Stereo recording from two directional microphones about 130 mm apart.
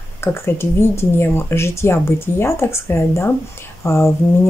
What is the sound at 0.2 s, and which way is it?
Speech, 20° left (ahead or behind).